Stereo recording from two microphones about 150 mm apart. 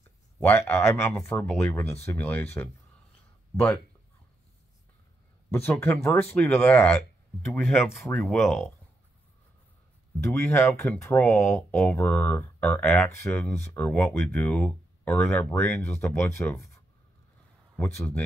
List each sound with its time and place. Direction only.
0.4 s speech: 15° left (ahead or behind)
5.7 s speech: 15° left (ahead or behind)
10.2 s speech: 15° left (ahead or behind)